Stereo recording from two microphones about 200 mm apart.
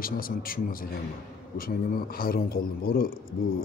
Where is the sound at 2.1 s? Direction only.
50° left (ahead or behind).